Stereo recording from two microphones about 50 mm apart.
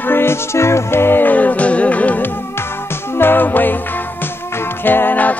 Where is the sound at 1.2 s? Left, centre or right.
Left.